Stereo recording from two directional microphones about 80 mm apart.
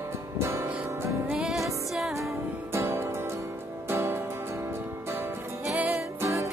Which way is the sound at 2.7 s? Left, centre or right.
Right.